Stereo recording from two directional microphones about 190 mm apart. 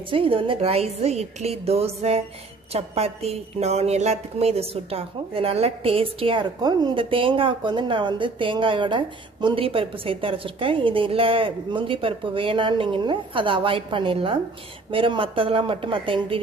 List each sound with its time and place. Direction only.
0.1 s a woman's voice: 30° right (ahead or behind)